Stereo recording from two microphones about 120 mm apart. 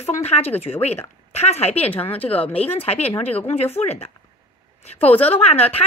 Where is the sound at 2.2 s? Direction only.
15° left (ahead or behind).